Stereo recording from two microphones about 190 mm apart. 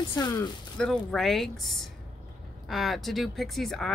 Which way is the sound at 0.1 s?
20° left (ahead or behind).